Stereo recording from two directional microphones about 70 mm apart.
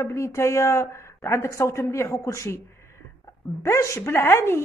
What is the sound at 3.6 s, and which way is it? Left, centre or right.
A woman's voice, left.